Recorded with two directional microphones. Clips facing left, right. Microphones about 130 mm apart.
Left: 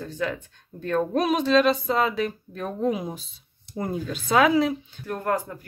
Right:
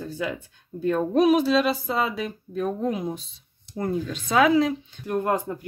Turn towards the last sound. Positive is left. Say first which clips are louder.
# right 2 dB
turn(degrees=-20)  # may be behind; listen again after turning